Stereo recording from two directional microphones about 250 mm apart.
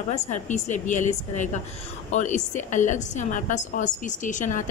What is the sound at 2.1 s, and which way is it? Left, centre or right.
A woman's voice, left.